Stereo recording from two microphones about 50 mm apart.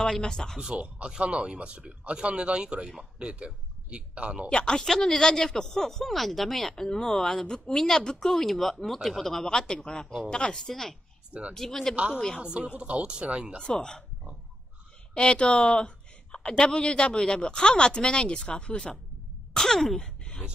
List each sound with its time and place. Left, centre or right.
0.0 s speech: centre
0.6 s a man's voice: right
4.5 s speech: centre
11.9 s speech: right
13.6 s speech: centre
15.1 s speech: left
19.5 s a sound: centre